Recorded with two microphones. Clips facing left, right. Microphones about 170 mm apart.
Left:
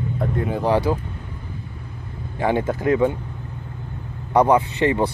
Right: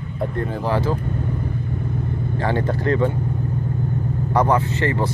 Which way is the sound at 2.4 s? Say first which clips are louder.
Left 2 dB; 10° left (ahead or behind).